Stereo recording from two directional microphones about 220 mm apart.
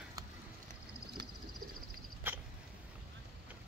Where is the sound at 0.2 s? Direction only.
15° right (ahead or behind).